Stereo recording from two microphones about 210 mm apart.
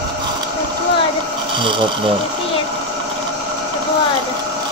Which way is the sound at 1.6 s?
25° right (ahead or behind).